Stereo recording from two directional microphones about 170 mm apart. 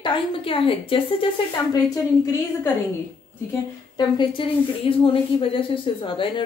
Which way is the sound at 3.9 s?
30° left (ahead or behind).